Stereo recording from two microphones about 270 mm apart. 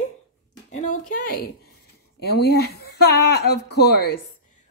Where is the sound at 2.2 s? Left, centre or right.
Left.